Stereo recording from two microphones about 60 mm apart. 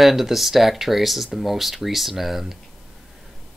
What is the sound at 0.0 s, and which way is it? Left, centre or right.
Speech, centre.